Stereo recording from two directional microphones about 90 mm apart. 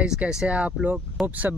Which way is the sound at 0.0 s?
10° right (ahead or behind).